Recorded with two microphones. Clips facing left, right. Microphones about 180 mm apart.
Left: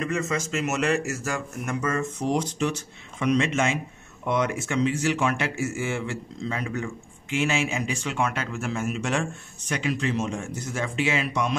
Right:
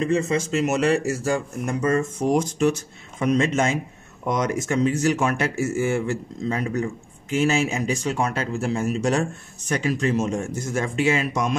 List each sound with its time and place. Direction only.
0.0 s speech: 30° right (ahead or behind)